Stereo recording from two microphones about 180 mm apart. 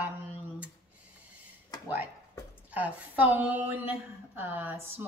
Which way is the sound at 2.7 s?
10° right (ahead or behind).